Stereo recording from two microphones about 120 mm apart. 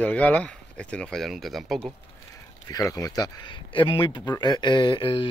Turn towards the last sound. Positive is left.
turn(degrees=45)  # may be behind; listen again after turning